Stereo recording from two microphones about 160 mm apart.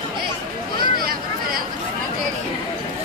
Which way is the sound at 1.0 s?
70° right (ahead or behind).